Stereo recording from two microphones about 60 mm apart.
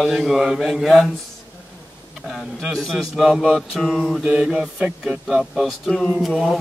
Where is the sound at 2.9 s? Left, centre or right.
Centre.